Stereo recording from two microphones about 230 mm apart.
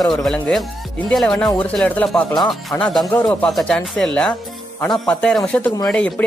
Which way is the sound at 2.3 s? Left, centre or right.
Centre.